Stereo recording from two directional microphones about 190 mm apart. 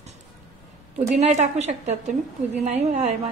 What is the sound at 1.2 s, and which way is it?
A woman's voice, 35° right (ahead or behind).